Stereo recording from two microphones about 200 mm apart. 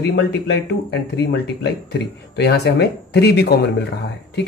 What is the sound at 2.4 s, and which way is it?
Speech, 55° left (ahead or behind).